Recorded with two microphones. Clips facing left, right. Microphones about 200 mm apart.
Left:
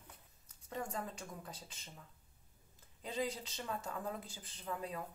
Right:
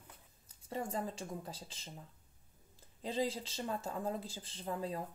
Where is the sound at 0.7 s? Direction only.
30° right (ahead or behind).